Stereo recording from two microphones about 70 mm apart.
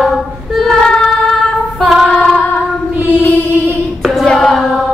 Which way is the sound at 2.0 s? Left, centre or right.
Centre.